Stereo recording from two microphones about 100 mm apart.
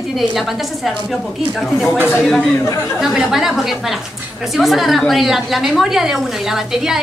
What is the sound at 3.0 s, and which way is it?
A woman's voice, 5° right (ahead or behind).